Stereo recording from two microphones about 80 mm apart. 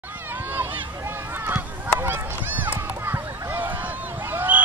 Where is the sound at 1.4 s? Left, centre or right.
Right.